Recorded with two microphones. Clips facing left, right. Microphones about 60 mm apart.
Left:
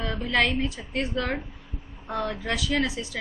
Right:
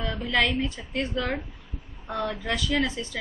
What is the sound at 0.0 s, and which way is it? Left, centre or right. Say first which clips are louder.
A woman's voice: left 1 dB; centre.